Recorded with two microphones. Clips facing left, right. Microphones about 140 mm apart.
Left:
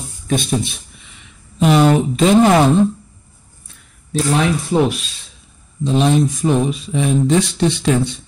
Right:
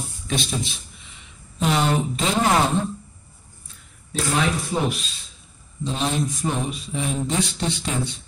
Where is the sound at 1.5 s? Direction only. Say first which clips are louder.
Left 9 dB; 70° left (ahead or behind); by 2.2 s 90° left.